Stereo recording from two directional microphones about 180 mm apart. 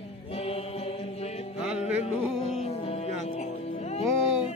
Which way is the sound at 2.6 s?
35° left (ahead or behind).